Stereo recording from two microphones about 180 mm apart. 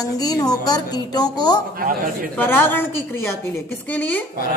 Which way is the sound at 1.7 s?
50° right (ahead or behind).